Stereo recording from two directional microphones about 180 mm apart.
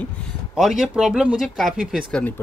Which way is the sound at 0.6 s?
Centre (ahead or behind).